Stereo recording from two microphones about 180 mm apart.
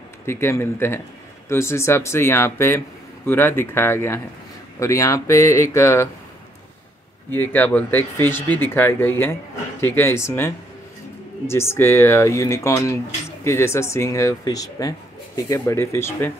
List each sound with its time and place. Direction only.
0.3 s speech: 15° left (ahead or behind)
7.2 s speech: 10° left (ahead or behind)